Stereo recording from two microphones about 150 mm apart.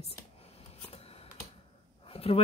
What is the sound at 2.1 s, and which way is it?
Speech, 40° left (ahead or behind).